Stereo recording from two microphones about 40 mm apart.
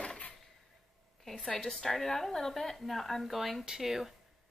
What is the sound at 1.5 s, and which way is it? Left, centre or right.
A woman's voice, centre.